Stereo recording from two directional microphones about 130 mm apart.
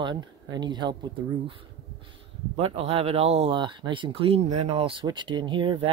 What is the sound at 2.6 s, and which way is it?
Speech, 50° right (ahead or behind).